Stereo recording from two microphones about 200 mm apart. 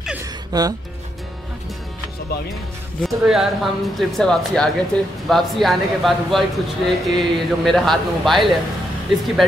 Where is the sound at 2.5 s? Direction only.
Centre (ahead or behind).